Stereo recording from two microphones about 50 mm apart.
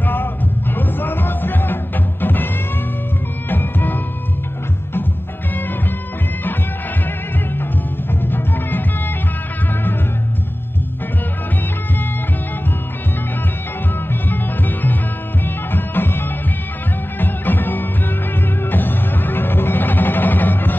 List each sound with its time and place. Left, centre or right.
0.0 s music: left
8.2 s music: left
14.3 s music: left